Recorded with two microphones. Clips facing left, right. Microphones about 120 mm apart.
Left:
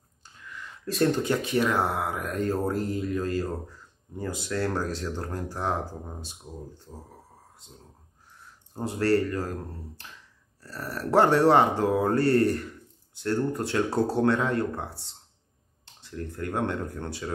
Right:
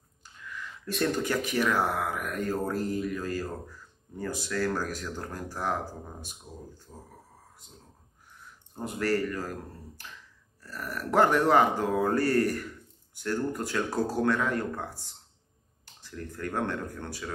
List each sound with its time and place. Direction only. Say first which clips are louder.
0.8 s speech: left 4 dB; 30° left (ahead or behind)
8.7 s speech: left 4 dB; 30° left (ahead or behind)